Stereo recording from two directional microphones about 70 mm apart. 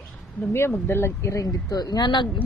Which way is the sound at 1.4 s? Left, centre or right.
Left.